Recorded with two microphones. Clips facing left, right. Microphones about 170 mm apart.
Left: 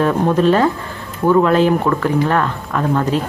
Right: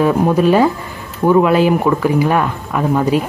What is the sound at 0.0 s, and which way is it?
Speech, 10° right (ahead or behind).